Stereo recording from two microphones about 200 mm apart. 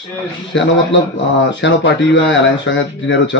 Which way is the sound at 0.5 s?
65° left (ahead or behind).